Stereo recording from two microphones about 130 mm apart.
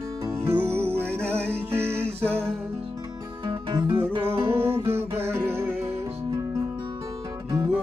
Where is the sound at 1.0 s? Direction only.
10° left (ahead or behind).